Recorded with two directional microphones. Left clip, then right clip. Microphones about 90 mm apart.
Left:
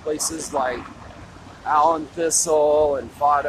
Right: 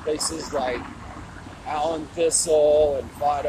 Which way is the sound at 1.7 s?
45° left (ahead or behind).